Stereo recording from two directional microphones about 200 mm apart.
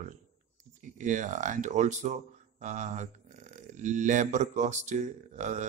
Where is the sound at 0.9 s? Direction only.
40° right (ahead or behind).